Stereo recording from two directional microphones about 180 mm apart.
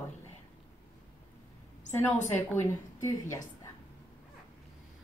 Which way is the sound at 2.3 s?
15° left (ahead or behind).